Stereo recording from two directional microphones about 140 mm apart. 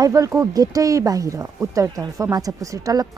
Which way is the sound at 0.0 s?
25° right (ahead or behind).